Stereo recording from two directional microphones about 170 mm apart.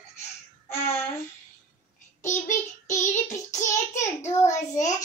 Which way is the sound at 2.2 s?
45° left (ahead or behind).